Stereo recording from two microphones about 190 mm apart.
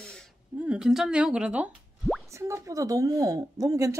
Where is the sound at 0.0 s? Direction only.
5° left (ahead or behind).